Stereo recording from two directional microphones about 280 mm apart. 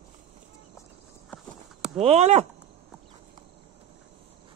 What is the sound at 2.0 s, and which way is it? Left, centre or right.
Speech, right.